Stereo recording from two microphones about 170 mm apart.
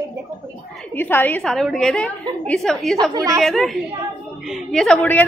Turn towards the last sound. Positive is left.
turn(degrees=5)  # may be behind; listen again after turning